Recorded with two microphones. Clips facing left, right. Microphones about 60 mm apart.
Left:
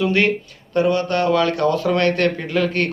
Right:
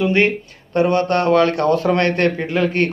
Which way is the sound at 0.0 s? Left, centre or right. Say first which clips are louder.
Right 2 dB; right.